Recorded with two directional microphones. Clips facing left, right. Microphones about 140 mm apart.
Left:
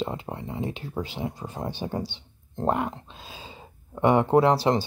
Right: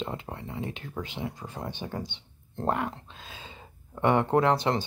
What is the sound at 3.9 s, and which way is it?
Speech, 15° left (ahead or behind).